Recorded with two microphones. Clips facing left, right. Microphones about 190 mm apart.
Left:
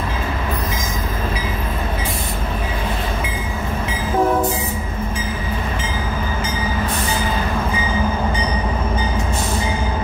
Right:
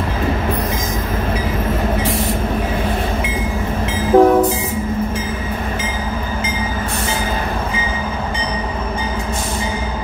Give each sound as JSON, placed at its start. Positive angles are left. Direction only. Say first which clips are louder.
{"t": 4.1, "sound": "train", "louder": "right 9 dB", "side_deg": -70}